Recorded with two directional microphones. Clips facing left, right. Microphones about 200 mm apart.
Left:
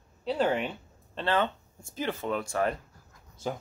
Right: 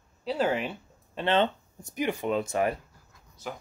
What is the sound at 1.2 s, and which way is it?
Speech, 20° right (ahead or behind).